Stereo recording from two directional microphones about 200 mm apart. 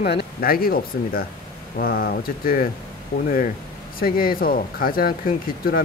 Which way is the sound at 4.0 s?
45° left (ahead or behind).